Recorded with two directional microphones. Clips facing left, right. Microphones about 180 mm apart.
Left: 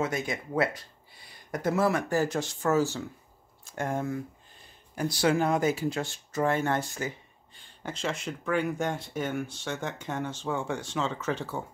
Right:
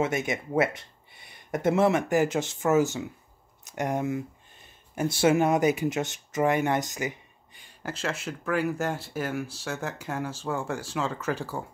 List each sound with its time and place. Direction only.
0.0 s speech: 25° right (ahead or behind)